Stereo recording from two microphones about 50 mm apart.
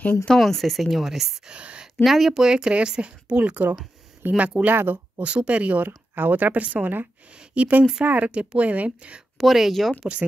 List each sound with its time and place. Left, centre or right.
0.0 s speech: left
0.5 s speech: centre
1.5 s a woman's voice: right
2.0 s speech: centre; by 3.5 s right
4.2 s speech: right
5.2 s speech: right
5.9 s speech: right
8.3 s speech: right
9.4 s speech: centre